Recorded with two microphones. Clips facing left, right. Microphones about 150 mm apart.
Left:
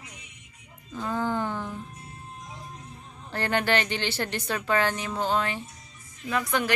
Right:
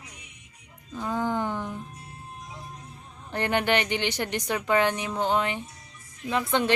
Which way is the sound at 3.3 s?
15° right (ahead or behind).